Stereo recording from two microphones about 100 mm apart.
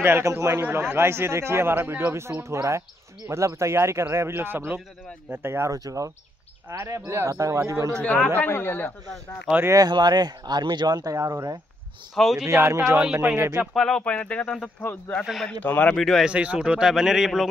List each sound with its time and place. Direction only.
0.0 s a man's voice: 25° right (ahead or behind)
8.0 s speech: 10° left (ahead or behind)
8.4 s speech: 20° left (ahead or behind)
9.7 s speech: 40° right (ahead or behind)
12.2 s a man's voice: centre (ahead or behind)
12.4 s a man's voice: 25° right (ahead or behind)
12.9 s a man's voice: 5° right (ahead or behind)
13.7 s speech: 5° left (ahead or behind)
16.0 s a man's voice: centre (ahead or behind)
16.3 s a man's voice: 10° right (ahead or behind)